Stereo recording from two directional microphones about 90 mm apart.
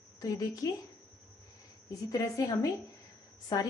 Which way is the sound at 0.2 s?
45° left (ahead or behind).